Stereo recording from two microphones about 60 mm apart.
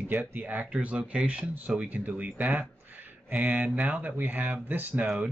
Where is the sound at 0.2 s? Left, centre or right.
Right.